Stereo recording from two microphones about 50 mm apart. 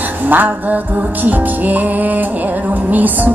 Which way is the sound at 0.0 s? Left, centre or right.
Right.